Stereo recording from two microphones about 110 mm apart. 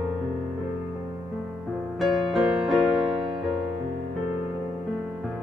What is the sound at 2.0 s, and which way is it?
Music, centre (ahead or behind).